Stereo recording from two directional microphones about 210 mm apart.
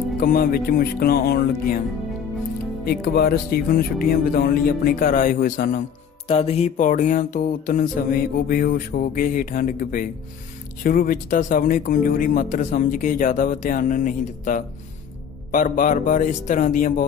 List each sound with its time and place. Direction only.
0.2 s speech: 45° left (ahead or behind)
2.8 s speech: 50° left (ahead or behind)
6.2 s speech: 30° left (ahead or behind)